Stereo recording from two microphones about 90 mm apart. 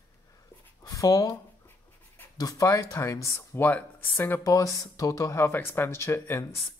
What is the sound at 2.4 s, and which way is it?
Speech, 40° left (ahead or behind).